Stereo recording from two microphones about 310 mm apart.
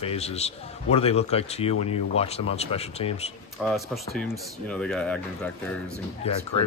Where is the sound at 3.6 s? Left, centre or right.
Centre.